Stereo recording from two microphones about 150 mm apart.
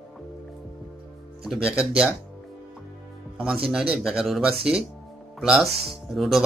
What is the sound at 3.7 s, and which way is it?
Speech, 5° right (ahead or behind).